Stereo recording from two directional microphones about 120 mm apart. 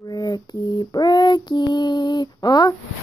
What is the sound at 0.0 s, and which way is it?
Child singing, 30° left (ahead or behind).